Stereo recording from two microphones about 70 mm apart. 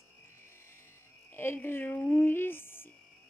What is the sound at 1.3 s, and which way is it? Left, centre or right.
Music, left.